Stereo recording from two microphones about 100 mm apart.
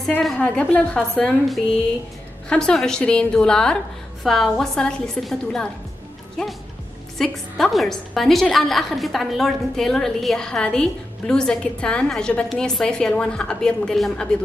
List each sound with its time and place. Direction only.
0.2 s a woman's voice: 15° left (ahead or behind)